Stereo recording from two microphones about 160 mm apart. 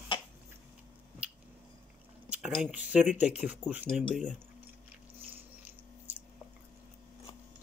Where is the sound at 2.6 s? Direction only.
10° right (ahead or behind).